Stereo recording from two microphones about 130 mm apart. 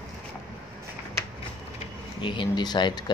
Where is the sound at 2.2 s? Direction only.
40° left (ahead or behind).